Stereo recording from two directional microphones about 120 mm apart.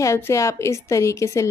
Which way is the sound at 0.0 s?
25° left (ahead or behind).